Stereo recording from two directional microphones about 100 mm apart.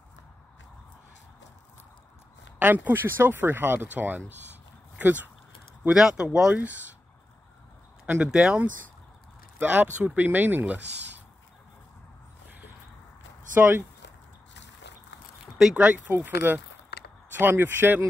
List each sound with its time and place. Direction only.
2.6 s speech: 20° right (ahead or behind)
5.9 s speech: 5° right (ahead or behind)
8.1 s speech: 10° right (ahead or behind)
9.6 s speech: 15° right (ahead or behind)
13.6 s speech: 20° right (ahead or behind)
15.5 s speech: 10° right (ahead or behind)